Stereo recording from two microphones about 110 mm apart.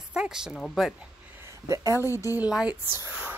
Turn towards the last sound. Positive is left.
turn(degrees=-15)  # may be behind; listen again after turning